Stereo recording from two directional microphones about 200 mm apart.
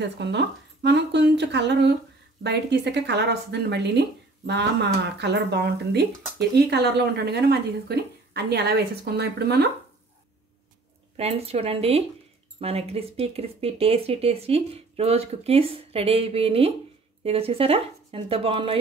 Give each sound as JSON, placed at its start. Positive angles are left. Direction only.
{"t": 0.2, "sound": "speech", "side_deg": -60}
{"t": 11.1, "sound": "speech", "side_deg": -30}